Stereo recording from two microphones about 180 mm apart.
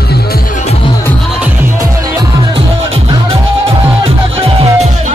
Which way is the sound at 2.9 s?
30° right (ahead or behind).